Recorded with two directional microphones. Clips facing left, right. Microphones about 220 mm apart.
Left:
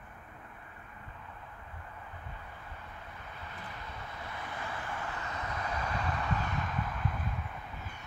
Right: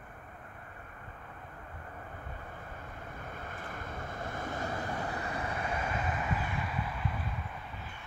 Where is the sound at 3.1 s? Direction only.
50° right (ahead or behind); by 5.8 s 30° right (ahead or behind).